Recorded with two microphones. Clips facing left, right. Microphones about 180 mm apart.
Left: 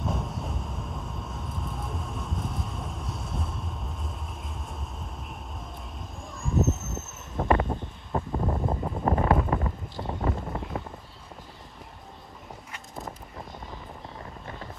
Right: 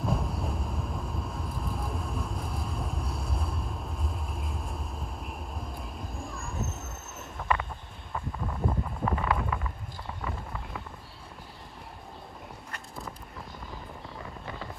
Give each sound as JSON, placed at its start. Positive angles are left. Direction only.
{"t": 0.0, "sound": "vehicle", "side_deg": 0}
{"t": 5.9, "sound": "a sound", "side_deg": 0}
{"t": 7.3, "sound": "wind chime", "side_deg": 40}
{"t": 8.1, "sound": "wind noise", "side_deg": 35}